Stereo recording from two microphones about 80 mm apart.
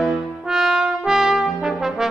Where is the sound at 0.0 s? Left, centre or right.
Centre.